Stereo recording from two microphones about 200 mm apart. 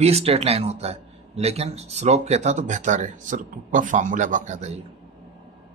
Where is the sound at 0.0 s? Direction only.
30° right (ahead or behind).